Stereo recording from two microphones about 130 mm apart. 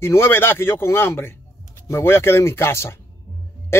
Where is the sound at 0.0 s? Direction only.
20° left (ahead or behind).